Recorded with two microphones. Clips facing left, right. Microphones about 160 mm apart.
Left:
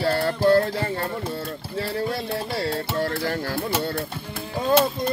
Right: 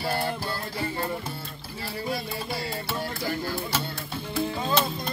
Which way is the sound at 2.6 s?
75° left (ahead or behind).